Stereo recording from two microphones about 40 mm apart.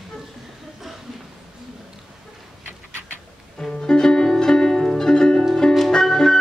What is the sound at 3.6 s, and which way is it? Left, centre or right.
Music, centre.